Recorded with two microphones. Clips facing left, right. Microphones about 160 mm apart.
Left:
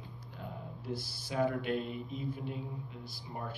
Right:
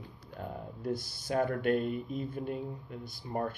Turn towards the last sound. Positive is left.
turn(degrees=-50)  # may be behind; listen again after turning